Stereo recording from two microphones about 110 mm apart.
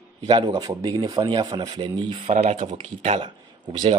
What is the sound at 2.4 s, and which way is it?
Speech, 80° right.